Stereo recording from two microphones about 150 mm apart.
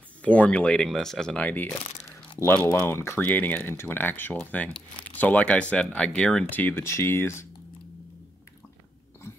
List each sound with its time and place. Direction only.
0.2 s speech: 10° left (ahead or behind)
1.7 s speech: 20° left (ahead or behind)